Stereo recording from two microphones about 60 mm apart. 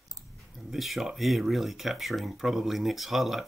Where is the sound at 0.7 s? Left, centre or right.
Centre.